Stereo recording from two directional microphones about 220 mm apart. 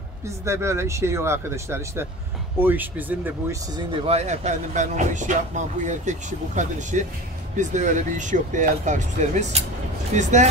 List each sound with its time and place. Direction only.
0.5 s speech: 10° right (ahead or behind)
3.7 s speech: 25° right (ahead or behind)